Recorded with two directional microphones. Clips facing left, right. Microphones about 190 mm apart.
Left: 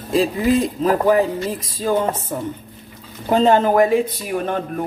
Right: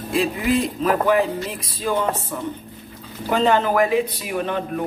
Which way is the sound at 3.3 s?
40° left (ahead or behind).